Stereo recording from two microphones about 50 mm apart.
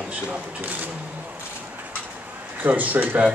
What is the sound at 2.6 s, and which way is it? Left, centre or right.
Speech, right.